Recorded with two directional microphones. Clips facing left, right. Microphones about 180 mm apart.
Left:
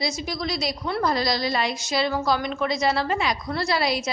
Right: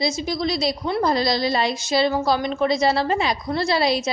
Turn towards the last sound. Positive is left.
turn(degrees=-25)  # may be behind; listen again after turning